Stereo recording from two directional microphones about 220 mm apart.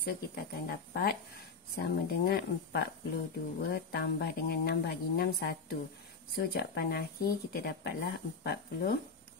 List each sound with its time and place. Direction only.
0.0 s speech: 45° left (ahead or behind)